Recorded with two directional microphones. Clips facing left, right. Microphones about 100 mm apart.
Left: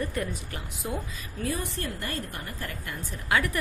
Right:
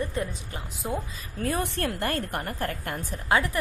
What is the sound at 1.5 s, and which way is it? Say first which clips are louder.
A woman's voice: right 5 dB; 65° right (ahead or behind).